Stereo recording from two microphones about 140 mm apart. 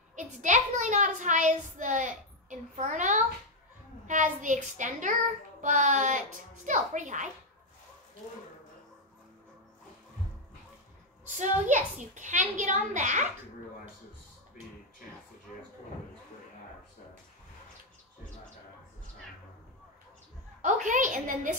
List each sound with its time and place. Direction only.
0.1 s a child's voice: 65° right (ahead or behind)
11.2 s a child's voice: 65° right (ahead or behind)
20.6 s a sound: 60° right (ahead or behind)